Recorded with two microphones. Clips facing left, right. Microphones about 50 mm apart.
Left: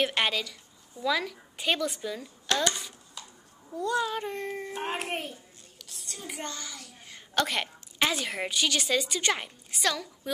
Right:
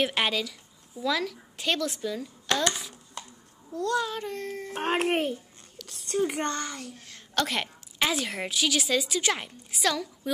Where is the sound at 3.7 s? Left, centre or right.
Centre.